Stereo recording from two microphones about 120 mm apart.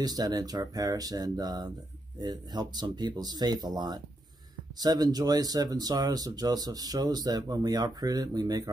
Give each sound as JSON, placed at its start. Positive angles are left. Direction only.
{"t": 0.0, "sound": "speech", "side_deg": -35}